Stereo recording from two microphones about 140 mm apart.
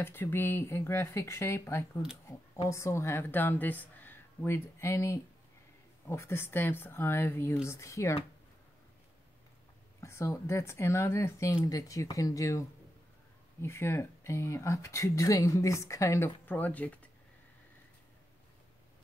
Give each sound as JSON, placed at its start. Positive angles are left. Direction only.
{"t": 0.0, "sound": "speech", "side_deg": 15}
{"t": 9.9, "sound": "speech", "side_deg": 20}